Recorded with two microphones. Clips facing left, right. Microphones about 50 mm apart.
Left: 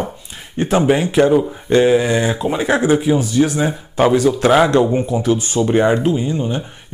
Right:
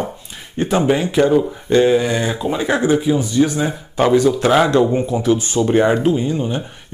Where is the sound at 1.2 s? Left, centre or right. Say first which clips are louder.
Even; centre.